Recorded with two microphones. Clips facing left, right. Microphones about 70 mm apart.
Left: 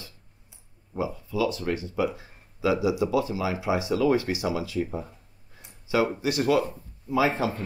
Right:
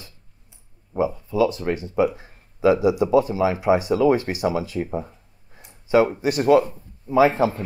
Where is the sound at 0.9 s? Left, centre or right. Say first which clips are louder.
Right 7 dB; right.